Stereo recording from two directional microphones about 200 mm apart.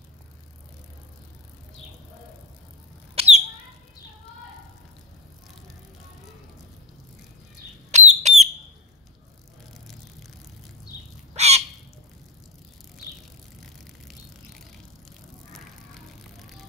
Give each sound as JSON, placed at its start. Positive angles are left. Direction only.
{"t": 3.2, "sound": "bird", "side_deg": -35}
{"t": 7.9, "sound": "bird", "side_deg": -35}
{"t": 11.3, "sound": "bird", "side_deg": -35}
{"t": 13.6, "sound": "vehicle", "side_deg": 0}